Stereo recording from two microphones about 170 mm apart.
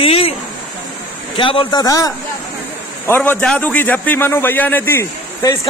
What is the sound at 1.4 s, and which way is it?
A man's voice, 30° left (ahead or behind).